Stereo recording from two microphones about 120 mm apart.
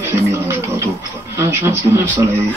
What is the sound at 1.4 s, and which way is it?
Speech, 25° right (ahead or behind).